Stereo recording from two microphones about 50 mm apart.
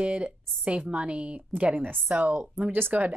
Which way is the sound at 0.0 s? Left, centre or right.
Right.